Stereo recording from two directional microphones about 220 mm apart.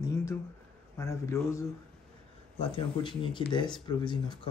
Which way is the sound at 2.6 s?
25° left (ahead or behind).